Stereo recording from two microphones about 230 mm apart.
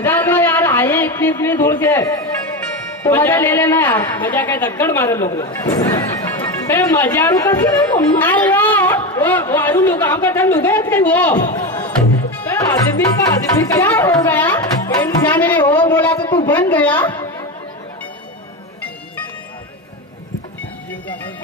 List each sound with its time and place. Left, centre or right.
0.0 s a sound: centre
3.0 s speech: centre
11.5 s music: centre
13.6 s speech: centre
14.6 s music: centre
16.4 s speech: centre
17.0 s a woman's voice: centre